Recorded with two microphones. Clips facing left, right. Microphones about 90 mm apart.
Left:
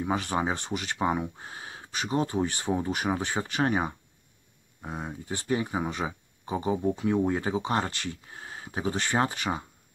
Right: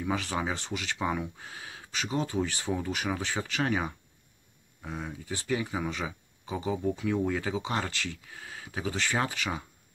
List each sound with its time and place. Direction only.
0.0 s speech: 25° left (ahead or behind)
2.5 s speech: 20° left (ahead or behind); by 7.9 s 35° left (ahead or behind)
8.0 s speech: 25° left (ahead or behind)